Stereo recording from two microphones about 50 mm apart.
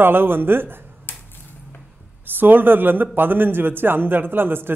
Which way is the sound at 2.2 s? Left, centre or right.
Right.